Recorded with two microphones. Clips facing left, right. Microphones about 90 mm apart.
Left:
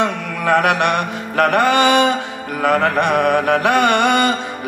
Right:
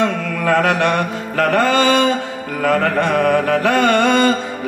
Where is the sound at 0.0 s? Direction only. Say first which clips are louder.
Right 1 dB; 20° left (ahead or behind).